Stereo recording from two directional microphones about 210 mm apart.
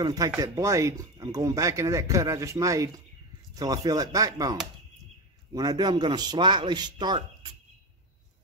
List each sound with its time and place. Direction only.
0.0 s a man's voice: 20° right (ahead or behind)